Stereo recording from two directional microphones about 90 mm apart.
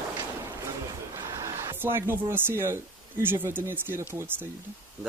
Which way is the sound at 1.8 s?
25° right (ahead or behind).